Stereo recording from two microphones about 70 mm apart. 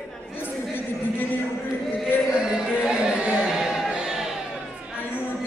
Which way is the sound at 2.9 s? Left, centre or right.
Centre.